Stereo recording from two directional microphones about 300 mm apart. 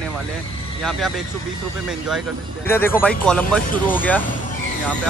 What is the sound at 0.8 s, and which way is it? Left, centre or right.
Speech, centre.